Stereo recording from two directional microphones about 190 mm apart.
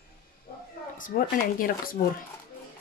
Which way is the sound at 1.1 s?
50° left (ahead or behind).